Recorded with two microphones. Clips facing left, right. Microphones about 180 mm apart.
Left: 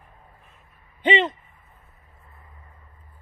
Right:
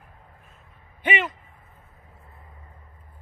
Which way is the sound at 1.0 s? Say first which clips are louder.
Left 5 dB; 25° left (ahead or behind).